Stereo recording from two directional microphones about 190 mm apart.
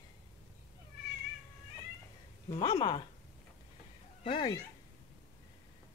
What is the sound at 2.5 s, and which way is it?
Speech, 30° left (ahead or behind).